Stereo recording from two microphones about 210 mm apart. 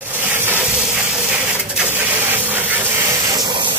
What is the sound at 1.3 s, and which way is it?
Printer, 5° right (ahead or behind).